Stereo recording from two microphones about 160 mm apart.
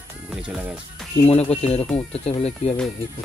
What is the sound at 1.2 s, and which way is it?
Speech, 40° left (ahead or behind).